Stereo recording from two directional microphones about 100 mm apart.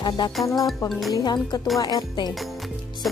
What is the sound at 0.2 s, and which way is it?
Speech, 50° left (ahead or behind).